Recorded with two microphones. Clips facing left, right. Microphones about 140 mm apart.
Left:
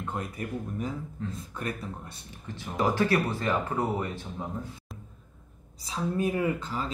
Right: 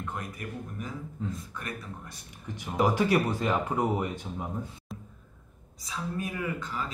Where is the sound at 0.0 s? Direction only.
30° left (ahead or behind).